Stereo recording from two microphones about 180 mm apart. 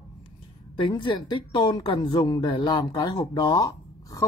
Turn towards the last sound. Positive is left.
turn(degrees=20)  # may be behind; listen again after turning